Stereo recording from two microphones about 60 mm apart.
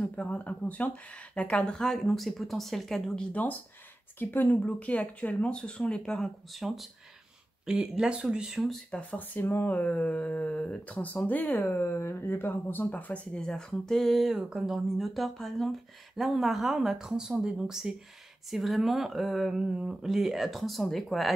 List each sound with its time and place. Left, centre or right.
0.0 s speech: left; by 3.3 s centre
4.2 s speech: left; by 6.6 s centre
6.6 s speech: centre
8.5 s speech: centre
8.9 s speech: left; by 21.3 s centre